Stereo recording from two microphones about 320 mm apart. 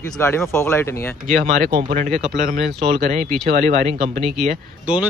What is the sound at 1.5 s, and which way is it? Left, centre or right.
Speech, right.